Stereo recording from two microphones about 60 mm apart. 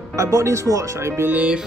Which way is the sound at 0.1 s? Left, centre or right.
Right.